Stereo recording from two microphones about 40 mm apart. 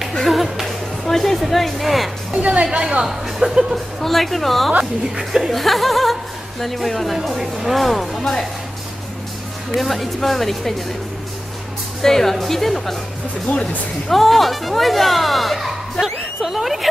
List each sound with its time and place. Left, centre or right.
0.2 s music: centre
2.3 s a woman's voice: right
3.1 s speech: centre
9.8 s speech: centre
12.0 s speech: centre
14.0 s speech: centre